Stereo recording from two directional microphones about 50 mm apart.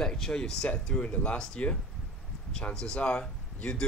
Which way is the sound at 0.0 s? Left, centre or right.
Centre.